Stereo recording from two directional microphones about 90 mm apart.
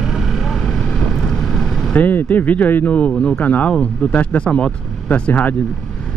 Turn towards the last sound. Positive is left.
turn(degrees=15)  # may be behind; listen again after turning